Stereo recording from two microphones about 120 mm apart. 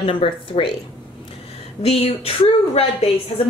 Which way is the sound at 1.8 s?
55° left (ahead or behind).